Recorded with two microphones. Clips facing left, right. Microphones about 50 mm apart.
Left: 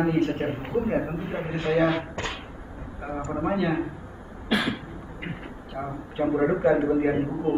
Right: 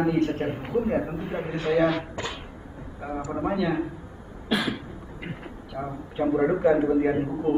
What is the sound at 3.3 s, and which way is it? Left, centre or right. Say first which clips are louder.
Speech: left 1 dB; centre.